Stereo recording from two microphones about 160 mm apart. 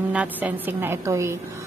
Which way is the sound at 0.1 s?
10° right (ahead or behind).